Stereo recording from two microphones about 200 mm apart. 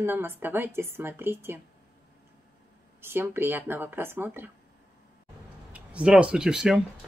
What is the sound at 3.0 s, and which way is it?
Speech, 10° right (ahead or behind).